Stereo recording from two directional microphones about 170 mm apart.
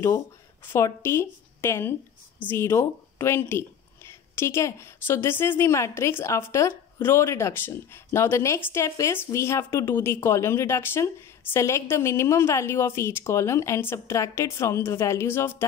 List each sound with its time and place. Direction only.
0.7 s speech: 15° left (ahead or behind)